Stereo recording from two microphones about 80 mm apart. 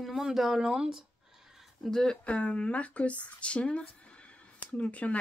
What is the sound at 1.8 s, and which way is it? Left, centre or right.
Speech, centre.